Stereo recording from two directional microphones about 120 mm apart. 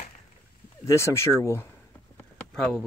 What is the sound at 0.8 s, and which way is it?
Speech, 25° left (ahead or behind).